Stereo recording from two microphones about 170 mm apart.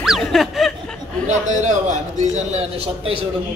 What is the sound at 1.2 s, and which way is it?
A man's voice, 45° right (ahead or behind).